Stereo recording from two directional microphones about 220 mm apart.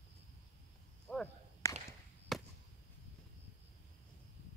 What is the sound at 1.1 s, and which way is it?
Whip, centre (ahead or behind).